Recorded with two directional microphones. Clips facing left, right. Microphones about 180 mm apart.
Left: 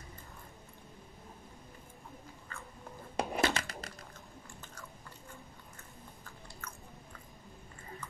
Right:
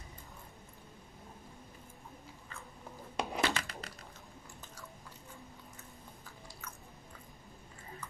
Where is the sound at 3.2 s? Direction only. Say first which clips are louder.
Left 2 dB; 40° left (ahead or behind).